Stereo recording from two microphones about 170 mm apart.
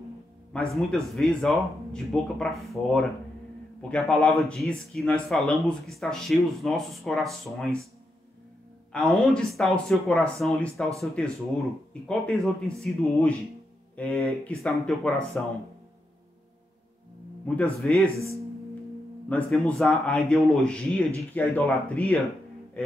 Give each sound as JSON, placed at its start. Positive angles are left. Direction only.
{"t": 0.5, "sound": "speech", "side_deg": 5}
{"t": 8.9, "sound": "speech", "side_deg": 5}
{"t": 17.5, "sound": "speech", "side_deg": 5}
{"t": 19.2, "sound": "speech", "side_deg": 10}
{"t": 22.8, "sound": "music", "side_deg": 5}